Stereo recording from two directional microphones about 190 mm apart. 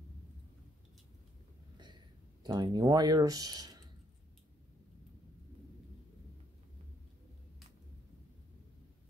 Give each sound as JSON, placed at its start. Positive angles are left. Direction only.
{"t": 2.4, "sound": "speech", "side_deg": -20}